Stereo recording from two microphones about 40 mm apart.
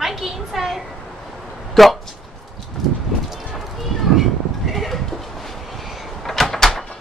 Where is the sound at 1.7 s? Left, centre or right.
Centre.